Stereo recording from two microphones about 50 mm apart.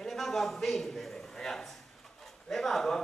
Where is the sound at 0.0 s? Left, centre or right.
Centre.